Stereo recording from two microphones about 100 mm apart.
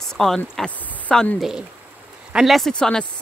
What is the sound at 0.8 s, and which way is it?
Speech, 15° left (ahead or behind).